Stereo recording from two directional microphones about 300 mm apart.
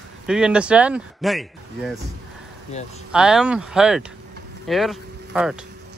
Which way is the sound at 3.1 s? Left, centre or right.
Centre.